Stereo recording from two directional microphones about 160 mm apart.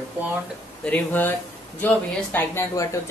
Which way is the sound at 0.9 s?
10° left (ahead or behind).